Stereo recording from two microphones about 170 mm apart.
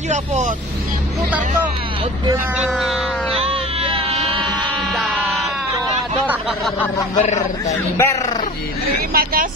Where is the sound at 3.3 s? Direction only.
35° right (ahead or behind).